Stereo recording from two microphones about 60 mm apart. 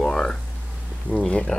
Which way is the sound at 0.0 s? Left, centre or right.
Centre.